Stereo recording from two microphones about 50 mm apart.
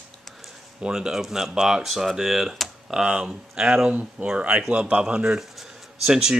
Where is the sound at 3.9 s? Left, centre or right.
Right.